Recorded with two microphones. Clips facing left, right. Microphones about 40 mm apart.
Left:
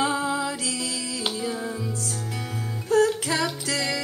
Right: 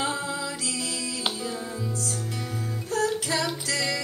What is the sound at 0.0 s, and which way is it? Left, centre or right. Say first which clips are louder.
Music: left 5 dB; left.